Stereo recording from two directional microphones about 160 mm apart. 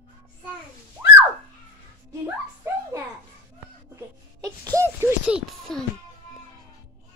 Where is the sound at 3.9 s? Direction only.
20° right (ahead or behind).